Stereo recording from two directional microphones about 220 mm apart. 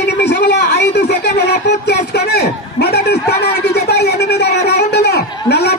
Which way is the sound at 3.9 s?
50° left (ahead or behind).